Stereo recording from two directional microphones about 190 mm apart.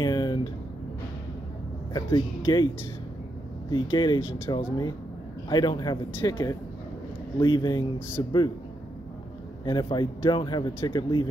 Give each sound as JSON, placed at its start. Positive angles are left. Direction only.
{"t": 0.0, "sound": "a sound", "side_deg": 20}
{"t": 2.0, "sound": "speech", "side_deg": 20}
{"t": 3.9, "sound": "speech", "side_deg": 25}
{"t": 9.7, "sound": "speech", "side_deg": 25}